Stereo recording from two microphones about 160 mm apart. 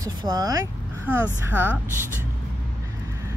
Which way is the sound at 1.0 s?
10° right (ahead or behind).